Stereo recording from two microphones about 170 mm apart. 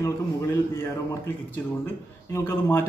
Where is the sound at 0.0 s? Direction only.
15° left (ahead or behind).